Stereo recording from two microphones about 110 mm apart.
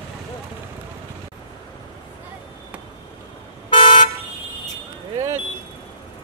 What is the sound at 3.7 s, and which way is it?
Toot, 50° left (ahead or behind).